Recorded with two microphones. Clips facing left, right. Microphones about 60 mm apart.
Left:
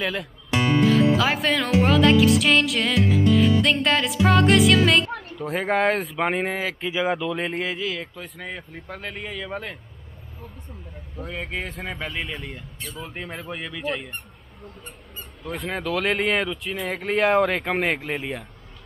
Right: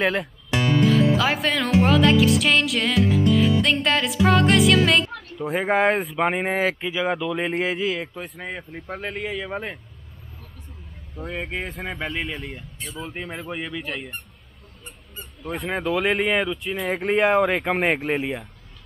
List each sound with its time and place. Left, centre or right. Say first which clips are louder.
0.8 s music: even; centre
6.4 s speech: right 4 dB; right
6.9 s music: even; centre
7.6 s speech: right 4 dB; right
8.5 s speech: right 2 dB; centre
11.3 s music: right 1 dB; centre
15.5 s music: right 2 dB; centre
17.1 s speech: right 1 dB; centre; by 18.2 s right
18.2 s music: right 3 dB; centre